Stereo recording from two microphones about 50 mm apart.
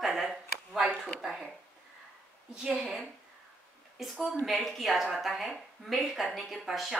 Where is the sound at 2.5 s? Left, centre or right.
Centre.